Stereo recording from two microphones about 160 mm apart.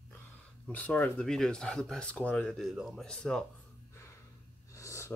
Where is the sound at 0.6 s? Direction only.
10° left (ahead or behind).